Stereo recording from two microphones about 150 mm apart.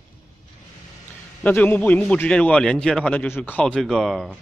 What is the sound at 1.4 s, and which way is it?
A man's voice, 10° left (ahead or behind).